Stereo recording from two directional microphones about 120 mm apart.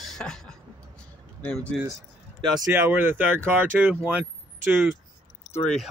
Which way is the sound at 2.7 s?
15° right (ahead or behind).